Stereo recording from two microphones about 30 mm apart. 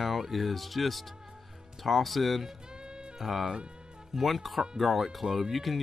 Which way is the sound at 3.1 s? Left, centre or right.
Centre.